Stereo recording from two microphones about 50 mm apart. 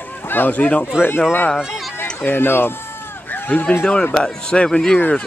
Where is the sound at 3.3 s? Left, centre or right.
Left.